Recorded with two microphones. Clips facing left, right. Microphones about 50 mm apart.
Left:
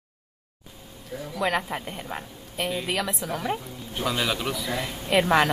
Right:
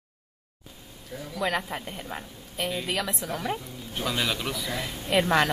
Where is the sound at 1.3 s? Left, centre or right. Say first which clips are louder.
Left 2 dB; centre.